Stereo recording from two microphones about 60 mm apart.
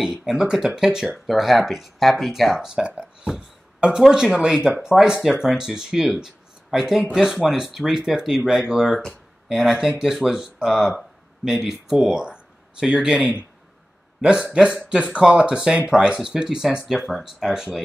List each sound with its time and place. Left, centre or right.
0.0 s speech: centre
14.4 s speech: centre